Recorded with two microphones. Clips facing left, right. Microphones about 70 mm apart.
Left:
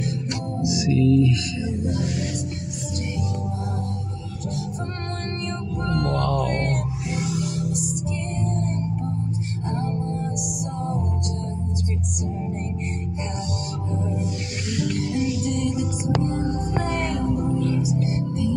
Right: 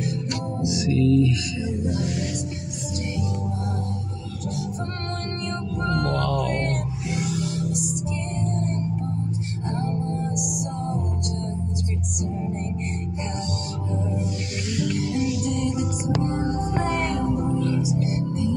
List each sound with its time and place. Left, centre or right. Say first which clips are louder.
0.8 s music: left 1 dB; centre
6.4 s music: left 1 dB; centre
9.7 s music: even; centre
10.3 s music: right 2 dB; centre
12.2 s music: right 3 dB; centre
16.2 s music: right 1 dB; right
17.3 s music: even; right